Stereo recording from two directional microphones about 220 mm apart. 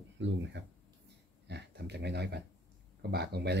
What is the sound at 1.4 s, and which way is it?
Speech, 50° right (ahead or behind).